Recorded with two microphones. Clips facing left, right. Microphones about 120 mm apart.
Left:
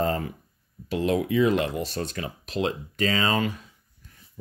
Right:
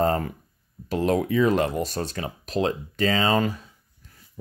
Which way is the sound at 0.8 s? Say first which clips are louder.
Right 2 dB; 45° right (ahead or behind).